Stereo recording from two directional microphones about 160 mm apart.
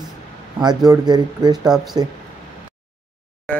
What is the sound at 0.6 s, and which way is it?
Speech, 25° right (ahead or behind).